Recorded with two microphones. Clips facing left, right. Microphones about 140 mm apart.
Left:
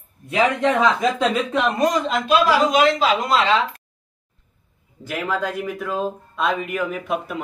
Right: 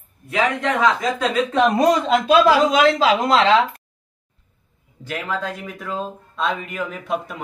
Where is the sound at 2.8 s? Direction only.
90° right.